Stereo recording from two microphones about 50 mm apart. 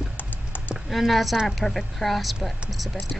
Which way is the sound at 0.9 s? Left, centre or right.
Centre.